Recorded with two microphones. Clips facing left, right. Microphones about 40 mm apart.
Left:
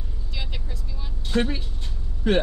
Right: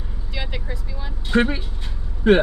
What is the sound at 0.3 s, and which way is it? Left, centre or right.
Vehicle, centre.